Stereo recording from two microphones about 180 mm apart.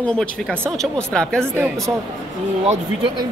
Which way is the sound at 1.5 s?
10° right (ahead or behind).